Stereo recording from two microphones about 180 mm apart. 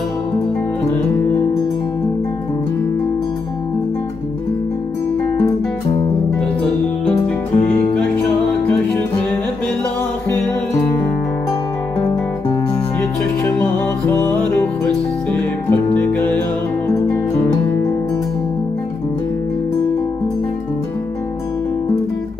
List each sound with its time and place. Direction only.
7.5 s music: 35° left (ahead or behind)
8.5 s music: centre (ahead or behind)
13.6 s music: 10° left (ahead or behind)